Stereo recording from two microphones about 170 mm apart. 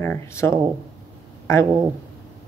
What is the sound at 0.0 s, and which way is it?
Speech, 15° left (ahead or behind).